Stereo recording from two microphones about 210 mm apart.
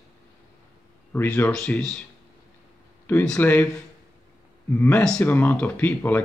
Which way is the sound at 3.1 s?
10° left (ahead or behind).